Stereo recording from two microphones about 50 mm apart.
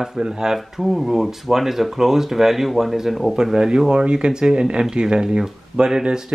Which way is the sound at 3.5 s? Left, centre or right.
Centre.